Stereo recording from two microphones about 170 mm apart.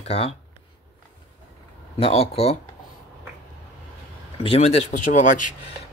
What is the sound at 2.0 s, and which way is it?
Speech, 35° left (ahead or behind).